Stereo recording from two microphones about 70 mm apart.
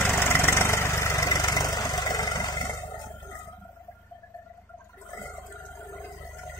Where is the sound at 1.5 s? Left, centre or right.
Left.